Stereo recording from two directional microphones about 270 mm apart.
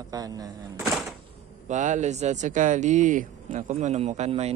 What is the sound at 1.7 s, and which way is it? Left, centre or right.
Speech, right.